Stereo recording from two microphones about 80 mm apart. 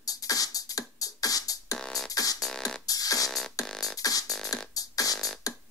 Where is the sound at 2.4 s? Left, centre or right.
Centre.